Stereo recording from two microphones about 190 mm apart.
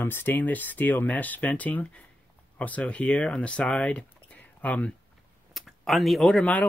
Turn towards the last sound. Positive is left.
turn(degrees=5)  # may be behind; listen again after turning